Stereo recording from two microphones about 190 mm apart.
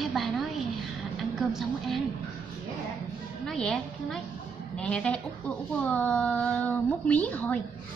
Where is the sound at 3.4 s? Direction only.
Centre (ahead or behind).